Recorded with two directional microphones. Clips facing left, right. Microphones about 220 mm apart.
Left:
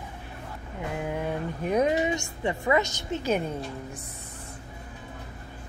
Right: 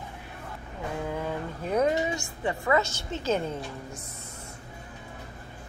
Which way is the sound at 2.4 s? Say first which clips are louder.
Even; 20° left (ahead or behind).